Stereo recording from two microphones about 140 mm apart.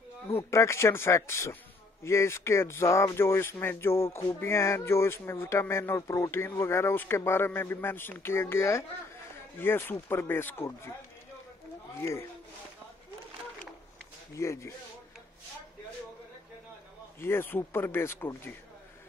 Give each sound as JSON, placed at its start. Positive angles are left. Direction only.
{"t": 0.5, "sound": "speech", "side_deg": 20}
{"t": 12.0, "sound": "speech", "side_deg": 20}
{"t": 14.3, "sound": "speech", "side_deg": 20}
{"t": 17.2, "sound": "speech", "side_deg": 15}